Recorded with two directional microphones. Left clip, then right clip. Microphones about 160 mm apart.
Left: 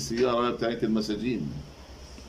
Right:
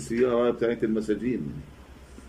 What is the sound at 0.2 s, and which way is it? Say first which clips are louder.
Speech: right 2 dB; 20° left (ahead or behind).